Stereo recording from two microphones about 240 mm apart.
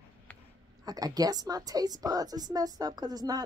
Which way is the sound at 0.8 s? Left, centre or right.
Centre.